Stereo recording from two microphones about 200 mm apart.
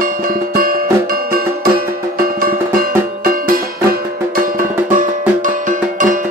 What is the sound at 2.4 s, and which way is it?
Music, 45° right (ahead or behind).